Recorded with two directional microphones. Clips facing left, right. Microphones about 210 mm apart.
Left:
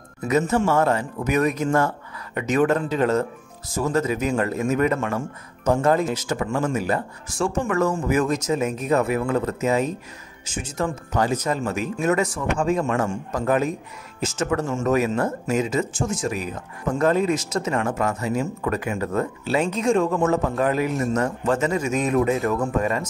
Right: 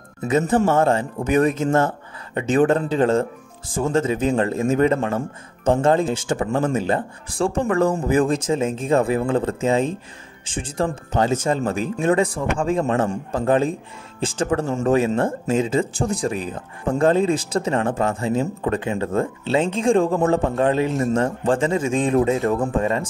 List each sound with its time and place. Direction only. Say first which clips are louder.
0.3 s speech: right 2 dB; 35° right (ahead or behind)